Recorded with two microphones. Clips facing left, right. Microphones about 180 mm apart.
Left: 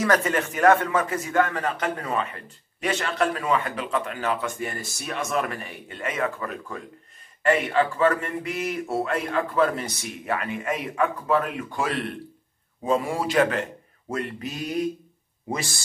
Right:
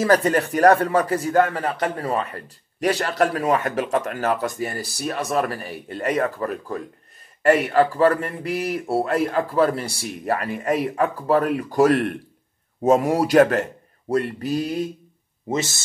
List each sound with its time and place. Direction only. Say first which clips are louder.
0.0 s speech: right 4 dB; 35° right (ahead or behind)